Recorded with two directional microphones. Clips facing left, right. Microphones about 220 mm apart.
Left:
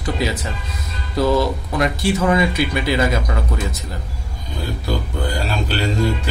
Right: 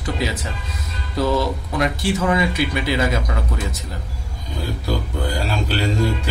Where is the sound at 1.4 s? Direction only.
40° left (ahead or behind).